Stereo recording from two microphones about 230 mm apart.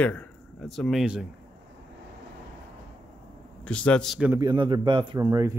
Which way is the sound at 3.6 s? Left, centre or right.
Centre.